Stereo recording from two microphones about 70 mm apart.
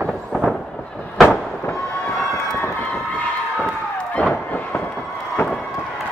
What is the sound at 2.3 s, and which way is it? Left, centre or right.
Run, left.